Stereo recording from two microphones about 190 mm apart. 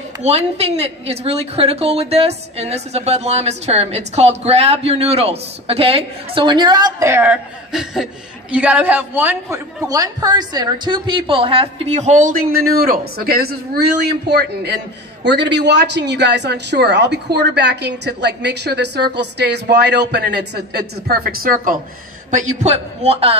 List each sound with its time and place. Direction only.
0.2 s a woman's voice: 35° right (ahead or behind)